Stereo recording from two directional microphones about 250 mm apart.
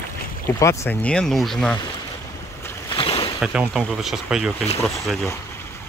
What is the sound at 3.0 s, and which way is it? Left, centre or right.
Boat, centre.